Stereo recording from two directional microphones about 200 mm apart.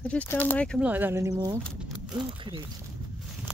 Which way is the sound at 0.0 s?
5° left (ahead or behind).